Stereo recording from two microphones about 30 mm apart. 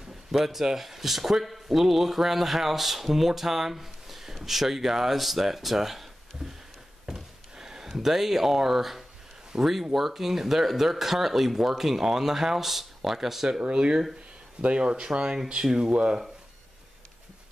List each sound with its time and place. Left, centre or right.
0.3 s speech: centre
7.1 s a sound: centre
8.0 s speech: centre
9.5 s speech: right
9.9 s speech: centre
13.5 s speech: right
15.6 s speech: centre
15.9 s speech: right